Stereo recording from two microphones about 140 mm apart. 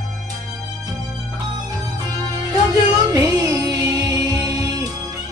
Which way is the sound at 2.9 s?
30° right (ahead or behind).